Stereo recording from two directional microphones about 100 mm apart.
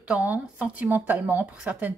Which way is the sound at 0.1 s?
10° right (ahead or behind).